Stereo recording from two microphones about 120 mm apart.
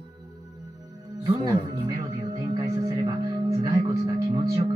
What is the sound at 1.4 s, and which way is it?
Music, 25° right (ahead or behind).